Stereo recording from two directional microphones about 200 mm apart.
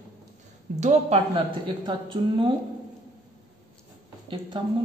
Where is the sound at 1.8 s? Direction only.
25° right (ahead or behind).